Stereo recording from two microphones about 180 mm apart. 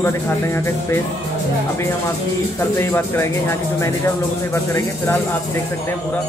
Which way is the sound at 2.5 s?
15° left (ahead or behind).